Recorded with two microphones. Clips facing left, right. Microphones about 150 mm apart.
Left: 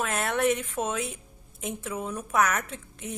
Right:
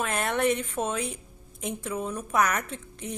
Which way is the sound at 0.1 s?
5° left (ahead or behind).